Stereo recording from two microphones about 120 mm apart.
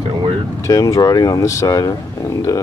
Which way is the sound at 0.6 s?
30° left (ahead or behind).